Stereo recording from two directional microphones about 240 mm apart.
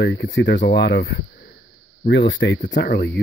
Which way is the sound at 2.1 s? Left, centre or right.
Left.